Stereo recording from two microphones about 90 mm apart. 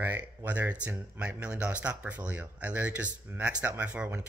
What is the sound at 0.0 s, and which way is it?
Speech, 20° right (ahead or behind).